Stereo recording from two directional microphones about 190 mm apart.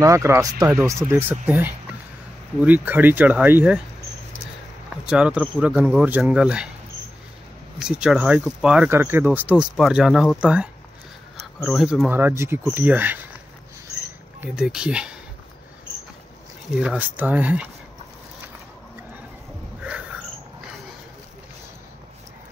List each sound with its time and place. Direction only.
0.0 s speech: 15° right (ahead or behind)
4.8 s speech: 5° right (ahead or behind)
7.8 s speech: 5° right (ahead or behind)
14.4 s speech: 5° right (ahead or behind)
16.7 s speech: 5° right (ahead or behind)